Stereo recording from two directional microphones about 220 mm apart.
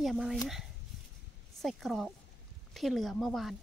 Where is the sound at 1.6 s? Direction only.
Centre (ahead or behind).